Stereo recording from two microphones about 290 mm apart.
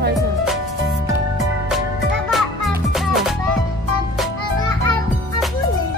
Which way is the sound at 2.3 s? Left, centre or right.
Centre.